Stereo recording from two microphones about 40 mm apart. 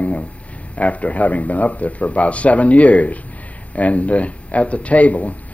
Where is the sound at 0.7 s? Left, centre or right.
Left.